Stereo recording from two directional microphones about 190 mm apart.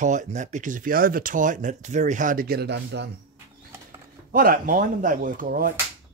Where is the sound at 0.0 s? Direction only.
40° right (ahead or behind); by 3.1 s 65° right (ahead or behind).